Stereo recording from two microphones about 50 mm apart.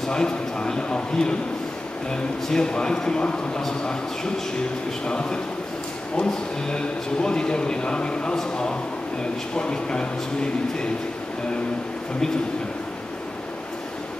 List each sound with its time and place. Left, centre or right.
0.0 s a man's voice: centre
2.4 s a man's voice: centre
5.0 s a man's voice: centre